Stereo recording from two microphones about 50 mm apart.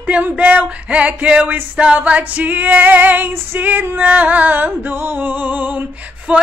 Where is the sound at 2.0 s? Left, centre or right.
Right.